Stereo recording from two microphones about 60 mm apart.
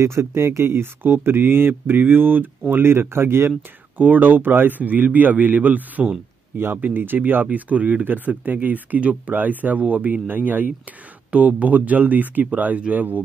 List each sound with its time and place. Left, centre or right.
0.0 s speech: right
4.0 s speech: right